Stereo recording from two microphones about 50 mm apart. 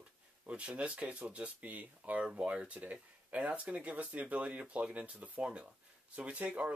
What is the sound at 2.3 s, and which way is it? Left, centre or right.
Speech, centre.